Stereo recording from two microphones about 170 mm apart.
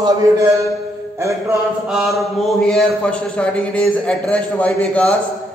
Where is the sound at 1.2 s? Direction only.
15° right (ahead or behind).